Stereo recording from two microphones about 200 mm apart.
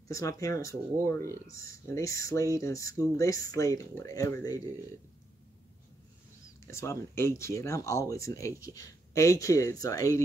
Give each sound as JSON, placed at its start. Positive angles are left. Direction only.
{"t": 0.1, "sound": "speech", "side_deg": 15}
{"t": 6.7, "sound": "speech", "side_deg": 15}